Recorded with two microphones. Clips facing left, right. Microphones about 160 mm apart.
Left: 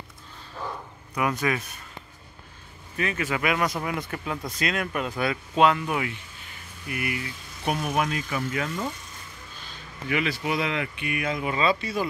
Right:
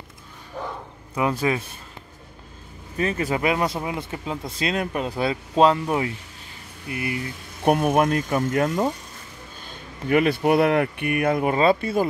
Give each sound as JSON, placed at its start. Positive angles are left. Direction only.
{"t": 1.1, "sound": "speech", "side_deg": -30}
{"t": 3.0, "sound": "speech", "side_deg": -35}
{"t": 7.6, "sound": "speech", "side_deg": -50}
{"t": 10.0, "sound": "speech", "side_deg": -50}